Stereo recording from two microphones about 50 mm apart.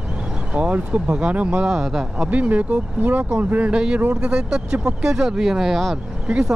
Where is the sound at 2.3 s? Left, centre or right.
Right.